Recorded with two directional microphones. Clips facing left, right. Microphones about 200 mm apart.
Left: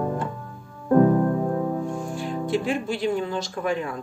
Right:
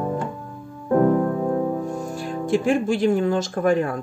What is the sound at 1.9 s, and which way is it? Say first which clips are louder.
Speech: right 1 dB; 40° right (ahead or behind).